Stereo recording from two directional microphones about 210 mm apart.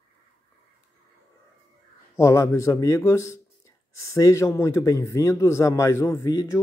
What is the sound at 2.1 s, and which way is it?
A man's voice, 15° left (ahead or behind).